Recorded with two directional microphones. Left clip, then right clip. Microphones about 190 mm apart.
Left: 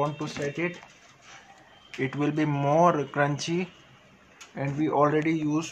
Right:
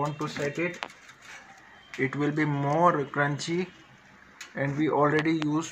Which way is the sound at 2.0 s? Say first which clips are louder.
Even; 25° left (ahead or behind).